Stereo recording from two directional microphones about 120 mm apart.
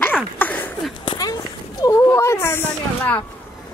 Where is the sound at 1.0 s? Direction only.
35° left (ahead or behind); by 3.2 s 15° left (ahead or behind).